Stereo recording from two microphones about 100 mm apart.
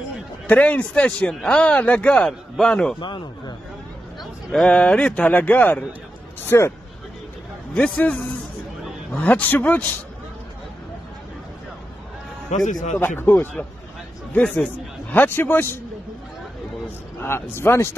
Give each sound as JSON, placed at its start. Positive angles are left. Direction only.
{"t": 0.5, "sound": "speech", "side_deg": 15}
{"t": 3.0, "sound": "speech", "side_deg": 50}
{"t": 4.5, "sound": "speech", "side_deg": 10}
{"t": 7.7, "sound": "speech", "side_deg": 15}
{"t": 13.0, "sound": "a man's voice", "side_deg": 20}
{"t": 17.2, "sound": "speech", "side_deg": 25}